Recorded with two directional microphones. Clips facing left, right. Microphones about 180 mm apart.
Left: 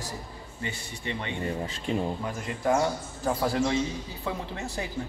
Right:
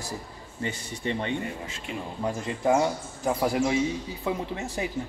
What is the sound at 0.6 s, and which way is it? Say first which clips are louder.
Speech: right 5 dB; 35° right (ahead or behind).